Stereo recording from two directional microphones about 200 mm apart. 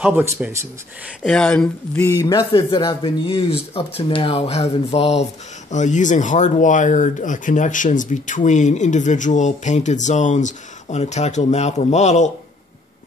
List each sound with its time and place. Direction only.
0.4 s speech: 10° right (ahead or behind)
1.2 s a man's voice: 5° left (ahead or behind); by 12.3 s 35° left (ahead or behind)